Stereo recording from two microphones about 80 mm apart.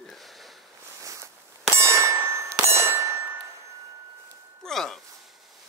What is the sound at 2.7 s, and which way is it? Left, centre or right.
Ding, right.